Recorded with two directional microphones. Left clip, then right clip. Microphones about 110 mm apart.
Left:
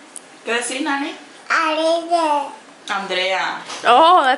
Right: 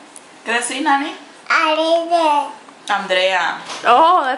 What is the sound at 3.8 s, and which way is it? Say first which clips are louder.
Speech: even; 15° left (ahead or behind).